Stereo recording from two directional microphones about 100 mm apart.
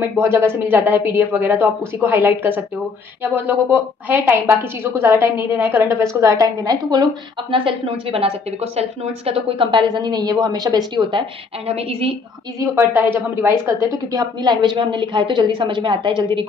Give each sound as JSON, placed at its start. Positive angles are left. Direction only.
{"t": 0.2, "sound": "a woman's voice", "side_deg": -25}
{"t": 7.5, "sound": "a woman's voice", "side_deg": -60}
{"t": 11.6, "sound": "a woman's voice", "side_deg": -85}
{"t": 12.5, "sound": "a woman's voice", "side_deg": -20}
{"t": 13.7, "sound": "a woman's voice", "side_deg": -30}